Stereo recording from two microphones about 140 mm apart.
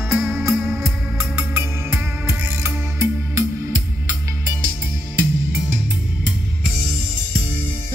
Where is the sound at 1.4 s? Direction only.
15° right (ahead or behind).